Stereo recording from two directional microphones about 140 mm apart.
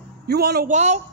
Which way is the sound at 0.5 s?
65° right (ahead or behind).